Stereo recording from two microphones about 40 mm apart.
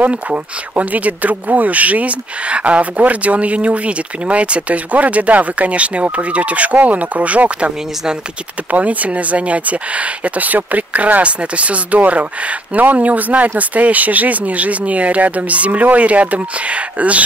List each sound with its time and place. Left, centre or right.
0.3 s speech: right
8.7 s speech: right